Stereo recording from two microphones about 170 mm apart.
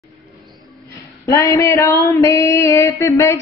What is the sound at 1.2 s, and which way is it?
Child singing, 20° left (ahead or behind).